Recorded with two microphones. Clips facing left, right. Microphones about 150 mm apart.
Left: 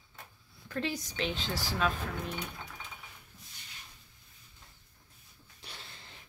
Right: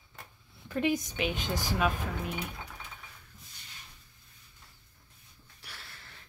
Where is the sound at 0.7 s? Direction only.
20° right (ahead or behind).